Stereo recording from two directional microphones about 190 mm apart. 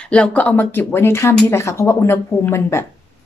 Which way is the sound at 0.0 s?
5° left (ahead or behind).